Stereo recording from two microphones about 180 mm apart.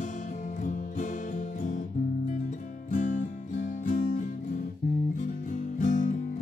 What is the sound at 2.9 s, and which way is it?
Music, 45° left (ahead or behind).